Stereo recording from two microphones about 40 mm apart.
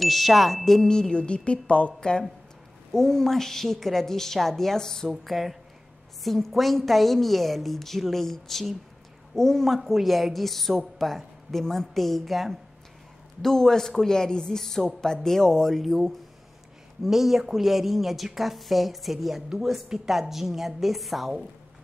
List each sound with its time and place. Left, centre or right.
0.0 s a woman's voice: centre
0.8 s a woman's voice: centre
2.0 s a woman's voice: left
5.2 s a woman's voice: centre
11.6 s a woman's voice: centre
11.9 s a woman's voice: centre
13.4 s a woman's voice: centre
15.7 s a woman's voice: centre
17.0 s a woman's voice: centre